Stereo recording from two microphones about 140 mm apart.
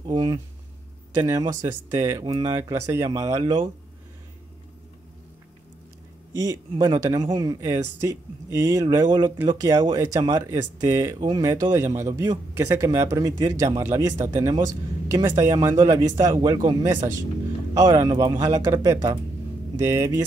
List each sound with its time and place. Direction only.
0.0 s a sound: 30° right (ahead or behind)
1.2 s speech: 25° right (ahead or behind)
2.2 s speech: 30° right (ahead or behind)
6.8 s speech: 30° right (ahead or behind)